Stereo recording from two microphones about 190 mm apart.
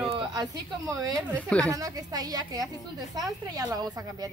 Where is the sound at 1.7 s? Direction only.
20° right (ahead or behind).